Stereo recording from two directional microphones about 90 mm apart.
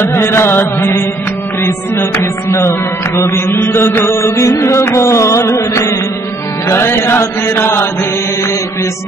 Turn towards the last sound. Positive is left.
turn(degrees=30)  # may be behind; listen again after turning